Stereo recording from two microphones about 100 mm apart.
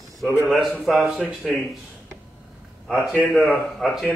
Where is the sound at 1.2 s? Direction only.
15° right (ahead or behind).